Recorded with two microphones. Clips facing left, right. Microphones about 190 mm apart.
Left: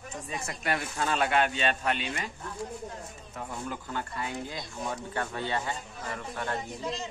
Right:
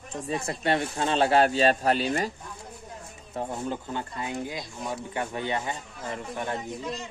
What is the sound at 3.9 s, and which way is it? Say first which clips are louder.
Speech: right 2 dB; 20° right (ahead or behind).